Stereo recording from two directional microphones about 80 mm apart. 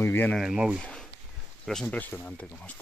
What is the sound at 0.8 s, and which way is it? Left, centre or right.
Speech, centre.